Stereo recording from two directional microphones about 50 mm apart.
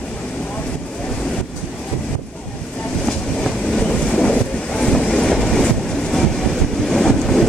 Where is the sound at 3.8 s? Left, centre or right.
Centre.